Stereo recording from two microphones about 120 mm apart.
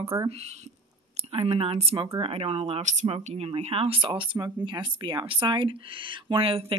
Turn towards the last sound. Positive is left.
turn(degrees=-50)  # may be behind; listen again after turning